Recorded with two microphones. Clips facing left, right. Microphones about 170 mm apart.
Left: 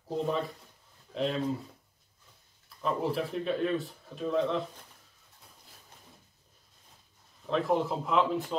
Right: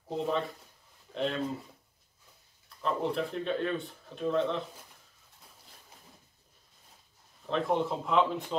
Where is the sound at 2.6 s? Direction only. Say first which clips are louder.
Left 1 dB; 5° left (ahead or behind).